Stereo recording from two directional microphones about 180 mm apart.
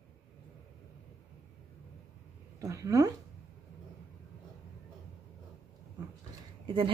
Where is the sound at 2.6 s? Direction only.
20° right (ahead or behind).